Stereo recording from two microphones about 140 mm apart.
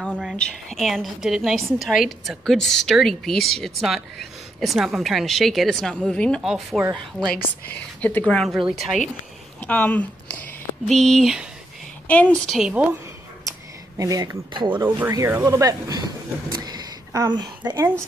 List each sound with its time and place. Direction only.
0.1 s speech: 5° right (ahead or behind)
6.4 s speech: 5° right (ahead or behind)
7.6 s speech: 10° left (ahead or behind)
9.7 s a sound: 10° left (ahead or behind)
11.0 s speech: centre (ahead or behind)
13.4 s a sound: 25° right (ahead or behind)
14.8 s speech: 20° right (ahead or behind)
16.5 s a sound: 30° right (ahead or behind)
17.7 s speech: 20° right (ahead or behind)